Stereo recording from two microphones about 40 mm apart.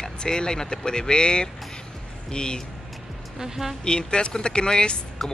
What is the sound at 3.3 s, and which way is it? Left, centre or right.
Speech, centre.